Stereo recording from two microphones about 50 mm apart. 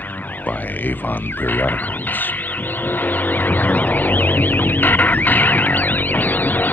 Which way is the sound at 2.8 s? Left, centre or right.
Left.